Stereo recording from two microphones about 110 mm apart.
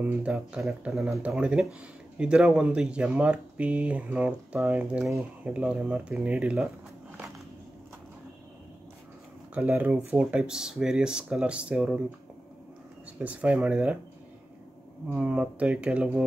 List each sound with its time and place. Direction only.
0.0 s speech: 10° right (ahead or behind)
5.4 s speech: 10° right (ahead or behind)
9.5 s speech: 5° right (ahead or behind)
9.8 s speech: 20° right (ahead or behind)
10.4 s speech: 5° right (ahead or behind)
13.2 s speech: 15° right (ahead or behind)
15.0 s speech: 15° right (ahead or behind)